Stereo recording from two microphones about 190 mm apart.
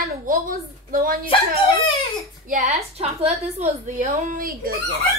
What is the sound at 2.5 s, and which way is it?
A woman's voice, 40° right (ahead or behind).